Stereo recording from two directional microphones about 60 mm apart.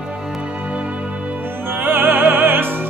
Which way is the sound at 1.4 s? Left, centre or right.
Right.